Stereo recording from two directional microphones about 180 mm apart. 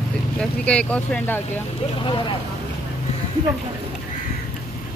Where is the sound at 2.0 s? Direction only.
25° left (ahead or behind).